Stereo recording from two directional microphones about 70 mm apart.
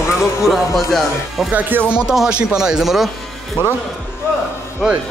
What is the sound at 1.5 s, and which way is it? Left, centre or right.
Speech, right.